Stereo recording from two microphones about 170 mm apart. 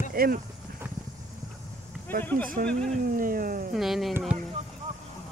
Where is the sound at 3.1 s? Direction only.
55° right (ahead or behind).